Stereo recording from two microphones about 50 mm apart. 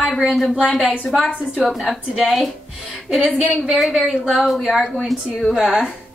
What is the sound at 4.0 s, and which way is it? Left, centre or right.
Speech, centre.